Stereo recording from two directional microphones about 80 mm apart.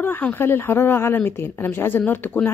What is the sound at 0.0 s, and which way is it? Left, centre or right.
Speech, left.